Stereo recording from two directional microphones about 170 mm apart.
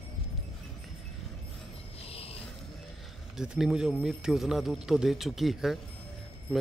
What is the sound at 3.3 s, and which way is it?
A man's voice, 5° right (ahead or behind).